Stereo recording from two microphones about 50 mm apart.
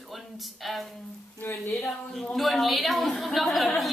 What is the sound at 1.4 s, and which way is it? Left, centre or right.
Speech, left.